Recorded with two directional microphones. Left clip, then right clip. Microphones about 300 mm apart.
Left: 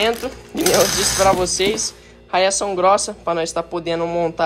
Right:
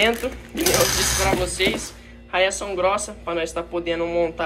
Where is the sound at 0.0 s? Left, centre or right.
Centre.